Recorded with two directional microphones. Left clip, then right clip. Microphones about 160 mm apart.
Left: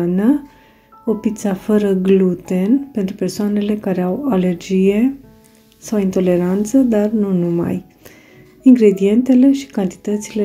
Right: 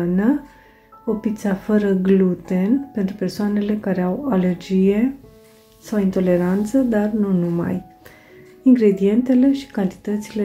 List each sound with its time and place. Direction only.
0.0 s speech: 30° left (ahead or behind)